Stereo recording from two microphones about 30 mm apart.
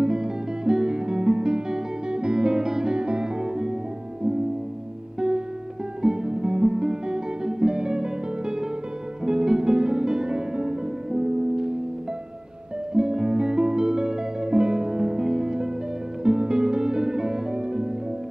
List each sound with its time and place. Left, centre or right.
0.0 s music: right
3.0 s music: right
6.0 s music: right
12.9 s music: right